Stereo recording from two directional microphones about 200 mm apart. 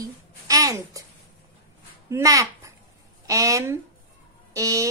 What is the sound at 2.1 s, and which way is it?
A child's voice, 15° right (ahead or behind).